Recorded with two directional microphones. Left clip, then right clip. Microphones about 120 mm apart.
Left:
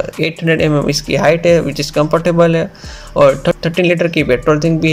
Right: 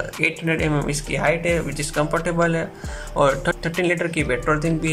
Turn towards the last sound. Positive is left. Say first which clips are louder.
# left 8 dB
turn(degrees=25)  # may be behind; listen again after turning